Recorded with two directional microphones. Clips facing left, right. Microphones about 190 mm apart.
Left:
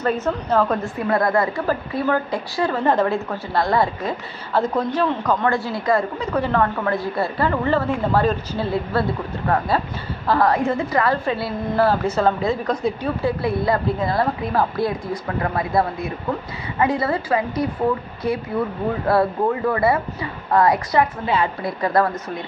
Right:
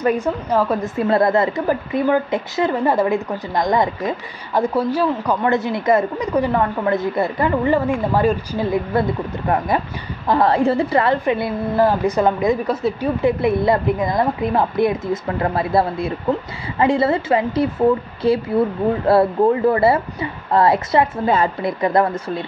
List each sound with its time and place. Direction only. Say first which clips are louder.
0.0 s a woman's voice: right 3 dB; 10° right (ahead or behind)
0.9 s a woman's voice: right 4 dB; 25° right (ahead or behind)
11.2 s a woman's voice: right 4 dB; 15° right (ahead or behind)